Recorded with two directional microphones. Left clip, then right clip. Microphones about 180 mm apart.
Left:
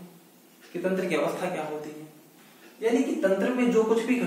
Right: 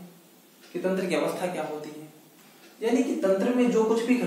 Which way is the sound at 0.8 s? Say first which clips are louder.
Even; 15° right (ahead or behind).